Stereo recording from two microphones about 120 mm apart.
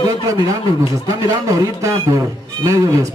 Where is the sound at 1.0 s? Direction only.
30° right (ahead or behind).